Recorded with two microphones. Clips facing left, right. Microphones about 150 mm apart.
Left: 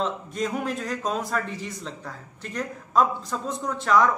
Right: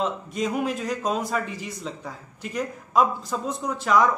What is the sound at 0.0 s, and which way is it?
A man's voice, 5° right (ahead or behind).